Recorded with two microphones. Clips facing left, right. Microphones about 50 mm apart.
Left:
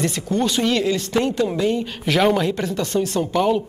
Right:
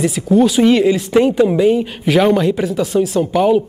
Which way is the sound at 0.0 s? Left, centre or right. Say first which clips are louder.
Right 8 dB; centre.